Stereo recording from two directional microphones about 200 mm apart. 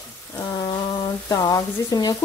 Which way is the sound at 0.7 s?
20° left (ahead or behind).